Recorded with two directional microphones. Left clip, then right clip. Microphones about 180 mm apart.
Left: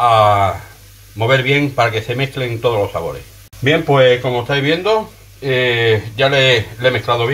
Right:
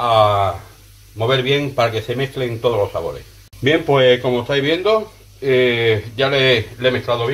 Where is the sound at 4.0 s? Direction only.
30° right (ahead or behind).